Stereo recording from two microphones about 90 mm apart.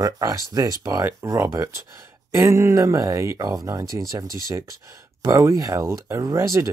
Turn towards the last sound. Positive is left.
turn(degrees=-35)  # may be behind; listen again after turning